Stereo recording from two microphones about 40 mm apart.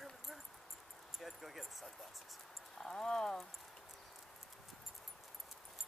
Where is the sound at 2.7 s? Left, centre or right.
Centre.